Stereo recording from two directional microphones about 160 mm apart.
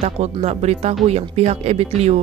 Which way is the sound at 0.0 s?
40° right (ahead or behind).